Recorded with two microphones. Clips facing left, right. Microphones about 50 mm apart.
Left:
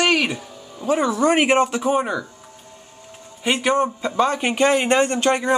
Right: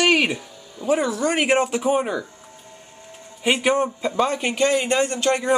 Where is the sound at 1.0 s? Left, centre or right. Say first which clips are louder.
Left 3 dB; centre.